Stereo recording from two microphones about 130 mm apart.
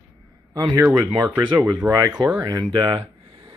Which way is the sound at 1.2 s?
15° right (ahead or behind).